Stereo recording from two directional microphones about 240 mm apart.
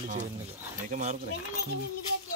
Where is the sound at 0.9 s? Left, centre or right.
Right.